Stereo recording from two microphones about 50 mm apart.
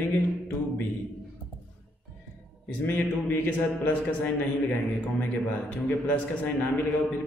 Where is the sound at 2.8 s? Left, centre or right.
Left.